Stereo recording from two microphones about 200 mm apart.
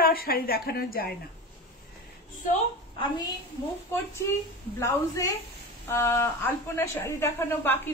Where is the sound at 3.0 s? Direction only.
20° left (ahead or behind).